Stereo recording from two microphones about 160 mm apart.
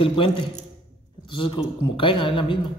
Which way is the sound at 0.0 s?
30° left (ahead or behind).